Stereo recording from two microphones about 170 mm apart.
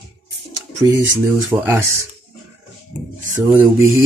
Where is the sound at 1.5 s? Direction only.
10° right (ahead or behind).